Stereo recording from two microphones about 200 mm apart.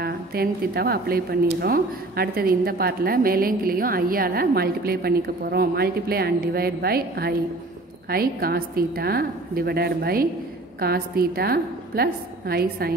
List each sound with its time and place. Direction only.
0.0 s speech: 50° right (ahead or behind)